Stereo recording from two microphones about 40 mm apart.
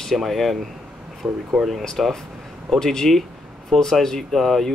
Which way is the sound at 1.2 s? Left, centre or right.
Right.